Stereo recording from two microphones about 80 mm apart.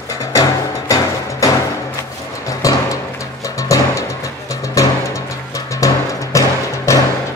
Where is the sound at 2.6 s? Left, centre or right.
Left.